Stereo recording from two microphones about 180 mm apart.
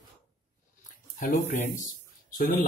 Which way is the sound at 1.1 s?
45° left (ahead or behind).